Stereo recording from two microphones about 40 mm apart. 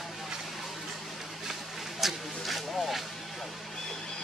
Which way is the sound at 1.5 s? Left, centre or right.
Centre.